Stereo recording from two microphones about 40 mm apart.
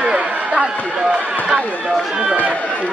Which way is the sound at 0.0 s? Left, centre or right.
Right.